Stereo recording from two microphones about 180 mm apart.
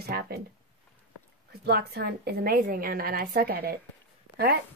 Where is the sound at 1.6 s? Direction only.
60° right (ahead or behind).